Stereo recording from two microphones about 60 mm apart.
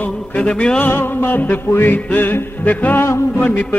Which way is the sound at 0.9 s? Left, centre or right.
Left.